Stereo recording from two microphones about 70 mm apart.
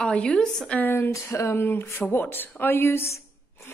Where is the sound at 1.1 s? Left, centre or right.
Left.